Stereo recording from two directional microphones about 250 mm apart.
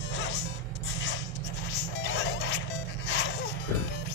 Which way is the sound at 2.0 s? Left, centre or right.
Left.